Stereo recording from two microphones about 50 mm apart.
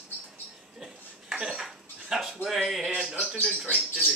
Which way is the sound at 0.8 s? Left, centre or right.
Centre.